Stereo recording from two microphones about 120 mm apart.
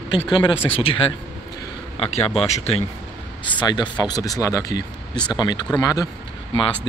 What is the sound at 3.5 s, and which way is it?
Speech, 35° left (ahead or behind).